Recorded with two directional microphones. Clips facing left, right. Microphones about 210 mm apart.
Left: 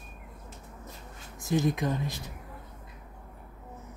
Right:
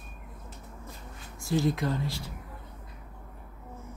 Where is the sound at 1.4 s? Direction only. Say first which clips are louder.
Even; 20° left (ahead or behind).